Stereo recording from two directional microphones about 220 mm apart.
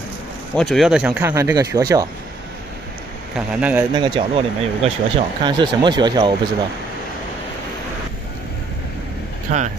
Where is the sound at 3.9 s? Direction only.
25° right (ahead or behind).